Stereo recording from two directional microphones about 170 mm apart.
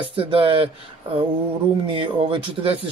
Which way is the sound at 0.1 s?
35° right (ahead or behind).